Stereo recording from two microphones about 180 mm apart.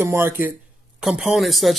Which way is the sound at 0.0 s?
10° right (ahead or behind).